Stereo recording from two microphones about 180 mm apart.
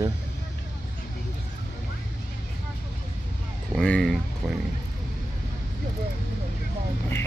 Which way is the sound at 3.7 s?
5° left (ahead or behind).